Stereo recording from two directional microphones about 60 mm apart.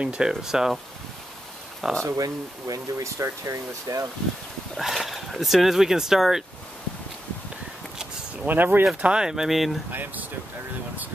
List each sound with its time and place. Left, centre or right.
0.0 s speech: centre
1.8 s speech: centre
2.1 s speech: right
4.7 s speech: centre
8.5 s speech: right
9.0 s speech: centre
9.8 s speech: right